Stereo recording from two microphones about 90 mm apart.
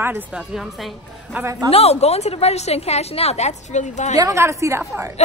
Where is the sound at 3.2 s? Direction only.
90° left.